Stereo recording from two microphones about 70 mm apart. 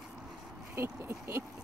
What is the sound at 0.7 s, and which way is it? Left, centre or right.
Speech, right.